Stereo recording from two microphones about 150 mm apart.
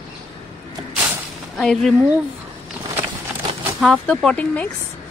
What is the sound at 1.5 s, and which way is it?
Speech, centre (ahead or behind).